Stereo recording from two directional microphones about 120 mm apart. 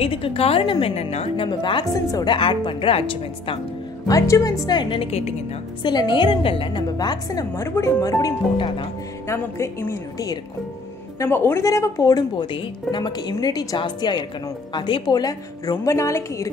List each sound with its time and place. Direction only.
0.0 s a woman's voice: 50° left (ahead or behind); by 2.3 s 30° left (ahead or behind)
2.3 s a woman's voice: 45° left (ahead or behind)
4.1 s speech: 30° left (ahead or behind); by 5.3 s 55° left (ahead or behind)
5.8 s speech: 40° left (ahead or behind)
8.5 s a woman's voice: 45° left (ahead or behind)
9.3 s a woman's voice: 20° left (ahead or behind)
11.1 s speech: 20° left (ahead or behind)